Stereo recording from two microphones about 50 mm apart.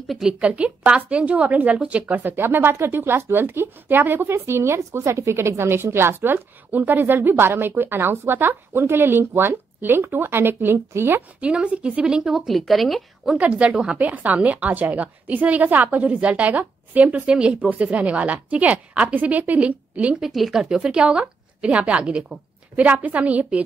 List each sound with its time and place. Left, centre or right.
0.4 s a woman's voice: right
4.5 s a woman's voice: right
11.5 s a woman's voice: right
12.4 s a woman's voice: centre
13.4 s a woman's voice: right
17.3 s a woman's voice: right
20.2 s a woman's voice: centre
20.6 s a woman's voice: centre
22.8 s a woman's voice: right